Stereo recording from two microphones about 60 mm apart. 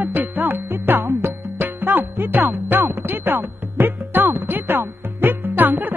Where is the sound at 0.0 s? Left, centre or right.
Right.